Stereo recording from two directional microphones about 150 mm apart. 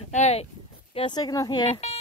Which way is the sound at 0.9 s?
30° left (ahead or behind).